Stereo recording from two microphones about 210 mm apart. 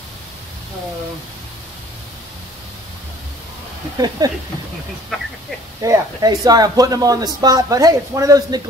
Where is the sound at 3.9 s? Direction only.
20° right (ahead or behind).